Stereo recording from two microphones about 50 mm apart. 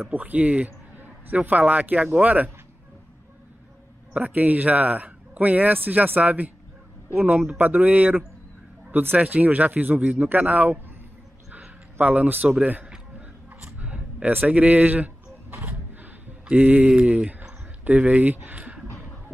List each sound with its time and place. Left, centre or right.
0.1 s speech: right
1.0 s a sound: right
1.7 s speech: right
4.2 s speech: right
9.2 s speech: right
12.0 s a man's voice: right
13.7 s a sound: right
14.3 s speech: right
15.6 s a sound: right
17.1 s speech: right